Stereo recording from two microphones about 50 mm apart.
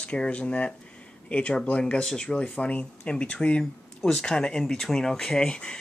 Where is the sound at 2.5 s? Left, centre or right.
Left.